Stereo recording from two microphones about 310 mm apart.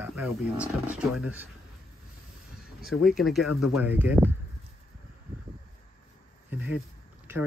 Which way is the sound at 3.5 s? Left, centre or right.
Left.